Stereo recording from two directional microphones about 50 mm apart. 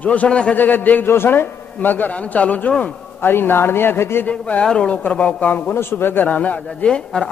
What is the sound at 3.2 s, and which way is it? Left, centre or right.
A man's voice, left.